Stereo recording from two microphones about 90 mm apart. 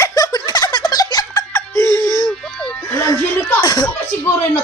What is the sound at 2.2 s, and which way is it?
Music, 5° left (ahead or behind).